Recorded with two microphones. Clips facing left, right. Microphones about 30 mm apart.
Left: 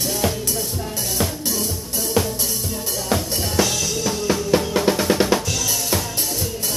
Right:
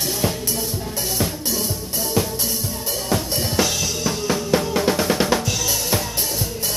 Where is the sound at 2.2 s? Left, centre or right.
Centre.